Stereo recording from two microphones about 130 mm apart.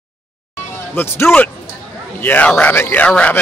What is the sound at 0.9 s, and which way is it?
A man's voice, 15° left (ahead or behind).